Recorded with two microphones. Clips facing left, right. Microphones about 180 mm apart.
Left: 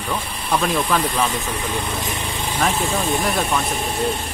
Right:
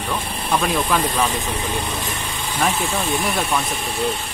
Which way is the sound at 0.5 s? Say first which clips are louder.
Even; 10° right (ahead or behind).